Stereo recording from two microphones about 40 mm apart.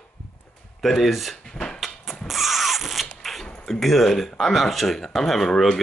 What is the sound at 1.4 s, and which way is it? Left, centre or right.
Drawer open or close, left.